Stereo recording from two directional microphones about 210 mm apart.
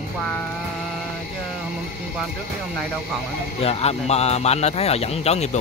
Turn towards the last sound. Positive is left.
turn(degrees=30)  # may be behind; listen again after turning